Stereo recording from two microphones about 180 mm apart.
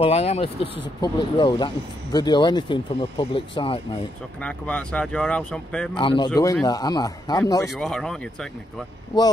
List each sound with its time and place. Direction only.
0.0 s speech: 35° left (ahead or behind)
4.4 s speech: 5° left (ahead or behind)
5.9 s speech: 25° left (ahead or behind)
7.7 s speech: centre (ahead or behind)